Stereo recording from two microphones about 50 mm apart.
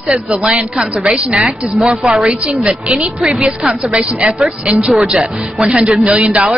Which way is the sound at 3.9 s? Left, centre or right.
Right.